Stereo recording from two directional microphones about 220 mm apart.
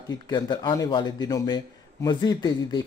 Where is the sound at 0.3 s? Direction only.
20° left (ahead or behind).